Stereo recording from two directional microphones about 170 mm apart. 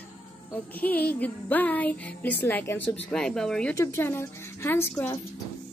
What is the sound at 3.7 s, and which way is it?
Music, 15° left (ahead or behind).